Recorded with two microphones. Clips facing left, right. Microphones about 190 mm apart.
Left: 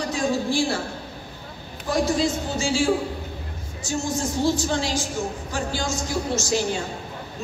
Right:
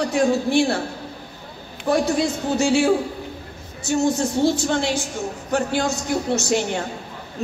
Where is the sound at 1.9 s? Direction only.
65° right (ahead or behind).